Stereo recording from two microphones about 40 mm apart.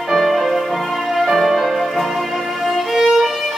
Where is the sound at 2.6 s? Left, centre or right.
Centre.